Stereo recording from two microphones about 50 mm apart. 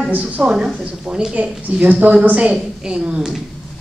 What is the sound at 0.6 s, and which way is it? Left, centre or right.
Speech, centre.